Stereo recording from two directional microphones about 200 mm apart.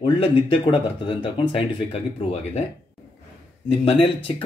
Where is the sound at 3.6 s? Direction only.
25° left (ahead or behind).